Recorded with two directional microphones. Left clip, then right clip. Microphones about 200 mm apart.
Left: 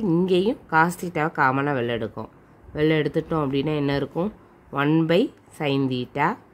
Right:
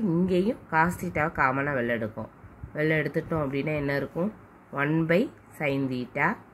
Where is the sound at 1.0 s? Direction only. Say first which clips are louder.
Left 4 dB; 45° left (ahead or behind).